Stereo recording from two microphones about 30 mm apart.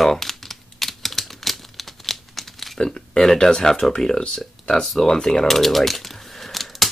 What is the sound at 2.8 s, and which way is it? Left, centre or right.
Speech, left.